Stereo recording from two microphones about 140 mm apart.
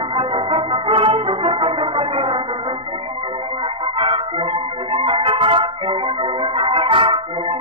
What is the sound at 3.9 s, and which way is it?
Music, 40° right (ahead or behind).